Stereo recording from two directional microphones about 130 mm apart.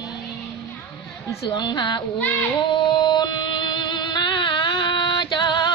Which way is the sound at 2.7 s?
35° left (ahead or behind).